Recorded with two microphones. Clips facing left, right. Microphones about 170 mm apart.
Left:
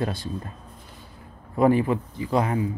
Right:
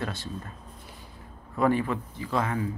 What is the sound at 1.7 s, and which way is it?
Speech, 30° left (ahead or behind).